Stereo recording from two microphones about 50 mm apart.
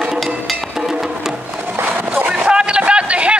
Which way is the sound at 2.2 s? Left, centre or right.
Right.